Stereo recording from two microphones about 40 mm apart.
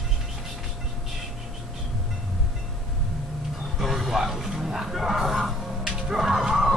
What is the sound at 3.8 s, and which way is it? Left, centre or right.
Music, centre.